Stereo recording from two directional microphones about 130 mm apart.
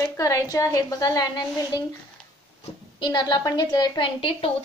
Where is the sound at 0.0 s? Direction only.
25° left (ahead or behind).